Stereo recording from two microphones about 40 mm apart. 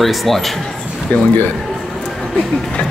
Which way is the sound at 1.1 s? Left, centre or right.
Left.